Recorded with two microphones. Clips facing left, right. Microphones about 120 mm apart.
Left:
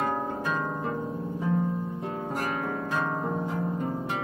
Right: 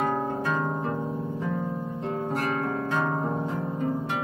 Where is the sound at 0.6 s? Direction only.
20° right (ahead or behind).